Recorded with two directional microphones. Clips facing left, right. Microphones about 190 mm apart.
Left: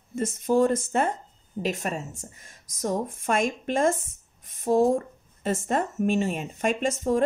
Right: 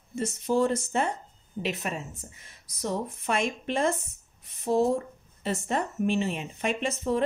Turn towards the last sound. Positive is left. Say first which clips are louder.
# left 3 dB
turn(degrees=45)  # may be behind; listen again after turning